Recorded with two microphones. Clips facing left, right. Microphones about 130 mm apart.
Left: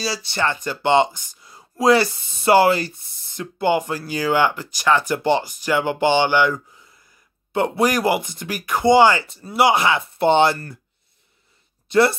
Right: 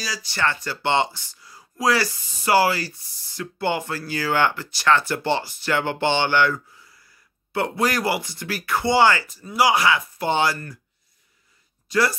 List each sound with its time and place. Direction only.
0.0 s speech: 30° left (ahead or behind)
11.9 s speech: 25° left (ahead or behind)